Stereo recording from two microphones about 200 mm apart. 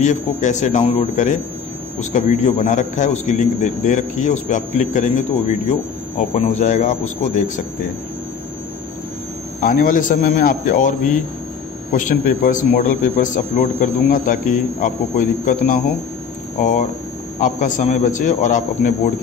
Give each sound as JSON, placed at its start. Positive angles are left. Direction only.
{"t": 0.0, "sound": "a man's voice", "side_deg": 35}
{"t": 9.6, "sound": "a man's voice", "side_deg": 45}